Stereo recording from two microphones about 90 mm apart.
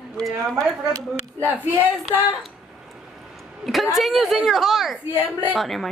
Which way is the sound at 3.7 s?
Centre (ahead or behind).